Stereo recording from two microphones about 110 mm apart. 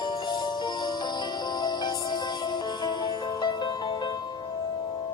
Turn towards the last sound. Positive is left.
turn(degrees=40)  # may be behind; listen again after turning